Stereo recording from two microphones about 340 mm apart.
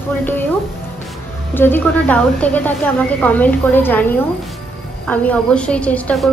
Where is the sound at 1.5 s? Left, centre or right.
Centre.